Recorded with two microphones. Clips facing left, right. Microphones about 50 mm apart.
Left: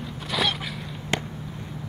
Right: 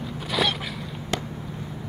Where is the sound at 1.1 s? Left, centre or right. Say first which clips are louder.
Left 1 dB; left.